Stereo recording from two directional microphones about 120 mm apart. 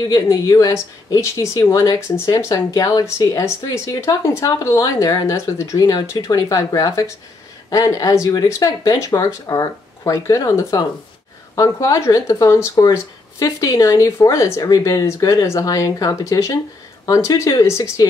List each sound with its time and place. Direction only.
0.0 s speech: 30° left (ahead or behind)